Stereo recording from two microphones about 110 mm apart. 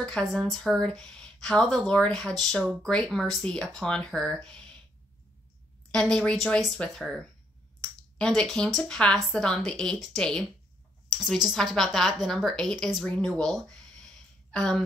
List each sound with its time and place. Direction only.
0.0 s speech: 5° left (ahead or behind)
5.9 s speech: 5° left (ahead or behind)
8.2 s a woman's voice: 5° left (ahead or behind)